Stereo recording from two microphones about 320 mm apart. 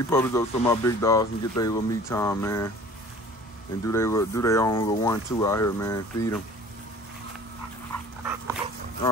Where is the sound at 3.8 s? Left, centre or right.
Centre.